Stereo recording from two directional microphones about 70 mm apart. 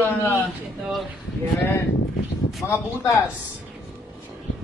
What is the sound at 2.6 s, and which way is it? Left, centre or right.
Speech, left.